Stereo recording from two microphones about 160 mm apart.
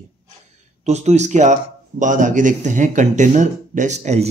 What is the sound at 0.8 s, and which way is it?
Speech, 45° right (ahead or behind).